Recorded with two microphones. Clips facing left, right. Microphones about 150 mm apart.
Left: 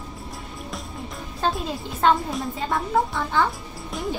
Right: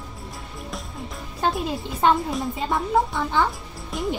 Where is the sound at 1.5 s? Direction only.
Centre (ahead or behind).